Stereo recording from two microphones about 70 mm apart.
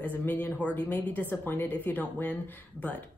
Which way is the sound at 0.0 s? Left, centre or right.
Left.